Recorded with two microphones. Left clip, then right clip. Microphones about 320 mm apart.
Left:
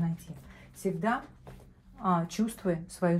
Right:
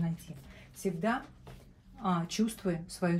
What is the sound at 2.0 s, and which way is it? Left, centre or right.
Speech, centre.